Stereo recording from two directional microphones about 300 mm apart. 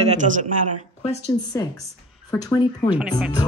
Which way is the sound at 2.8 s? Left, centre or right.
Centre.